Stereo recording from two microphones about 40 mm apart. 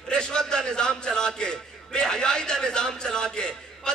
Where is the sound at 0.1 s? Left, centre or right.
Centre.